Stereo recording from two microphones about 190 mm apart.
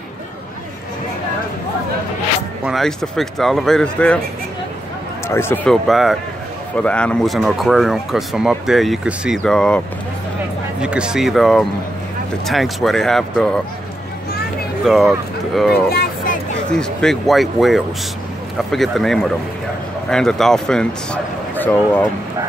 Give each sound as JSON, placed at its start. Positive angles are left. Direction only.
{"t": 2.6, "sound": "speech", "side_deg": 0}
{"t": 5.3, "sound": "speech", "side_deg": 10}
{"t": 10.8, "sound": "speech", "side_deg": -5}
{"t": 14.9, "sound": "speech", "side_deg": 0}
{"t": 15.9, "sound": "a sound", "side_deg": 50}
{"t": 16.7, "sound": "speech", "side_deg": 5}